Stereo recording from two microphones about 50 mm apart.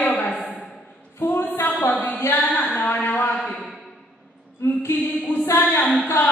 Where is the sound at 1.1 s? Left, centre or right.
Left.